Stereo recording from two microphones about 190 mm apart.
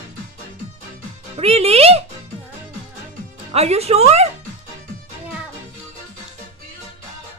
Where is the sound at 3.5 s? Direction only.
35° right (ahead or behind).